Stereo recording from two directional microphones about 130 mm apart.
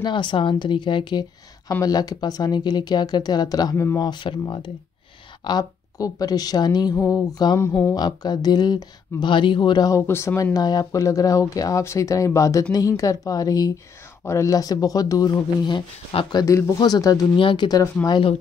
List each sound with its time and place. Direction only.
0.0 s speech: 40° left (ahead or behind); by 4.1 s 20° left (ahead or behind)
4.1 s speech: 40° left (ahead or behind); by 7.9 s 15° left (ahead or behind)
7.9 s speech: 30° left (ahead or behind)
10.0 s speech: 20° left (ahead or behind)